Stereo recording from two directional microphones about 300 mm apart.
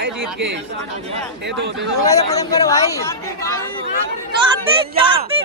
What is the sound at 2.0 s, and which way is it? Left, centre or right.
Speech, centre.